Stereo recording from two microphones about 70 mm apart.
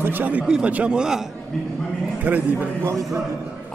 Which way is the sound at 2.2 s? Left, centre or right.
Right.